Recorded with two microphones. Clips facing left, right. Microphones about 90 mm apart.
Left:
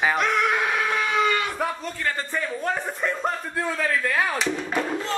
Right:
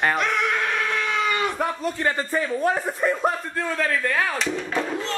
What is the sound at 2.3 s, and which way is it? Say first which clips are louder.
Speech: right 4 dB; 5° right (ahead or behind).